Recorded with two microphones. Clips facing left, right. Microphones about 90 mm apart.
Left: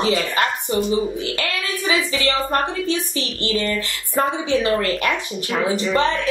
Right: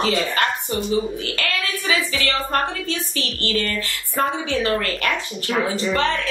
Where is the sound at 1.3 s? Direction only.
20° left (ahead or behind).